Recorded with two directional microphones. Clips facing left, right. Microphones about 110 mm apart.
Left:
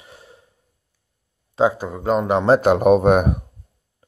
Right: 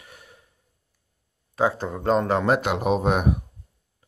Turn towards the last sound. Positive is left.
turn(degrees=50)  # may be behind; listen again after turning